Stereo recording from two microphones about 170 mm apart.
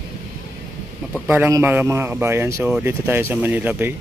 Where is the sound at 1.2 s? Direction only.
15° right (ahead or behind).